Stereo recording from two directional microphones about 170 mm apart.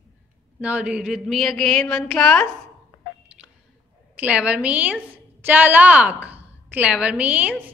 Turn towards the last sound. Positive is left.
turn(degrees=-10)  # may be behind; listen again after turning